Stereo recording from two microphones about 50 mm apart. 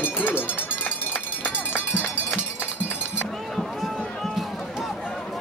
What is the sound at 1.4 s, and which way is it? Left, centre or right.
Run, left.